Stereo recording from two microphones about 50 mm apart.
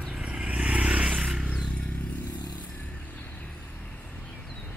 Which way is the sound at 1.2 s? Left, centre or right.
Centre.